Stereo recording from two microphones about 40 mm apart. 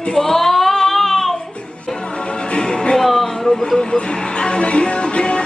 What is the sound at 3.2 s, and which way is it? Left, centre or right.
Music, centre.